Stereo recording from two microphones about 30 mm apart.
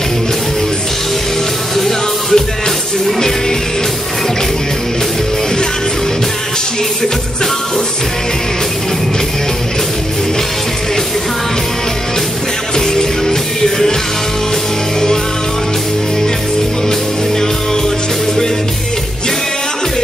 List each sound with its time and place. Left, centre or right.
1.8 s music: centre
12.7 s music: centre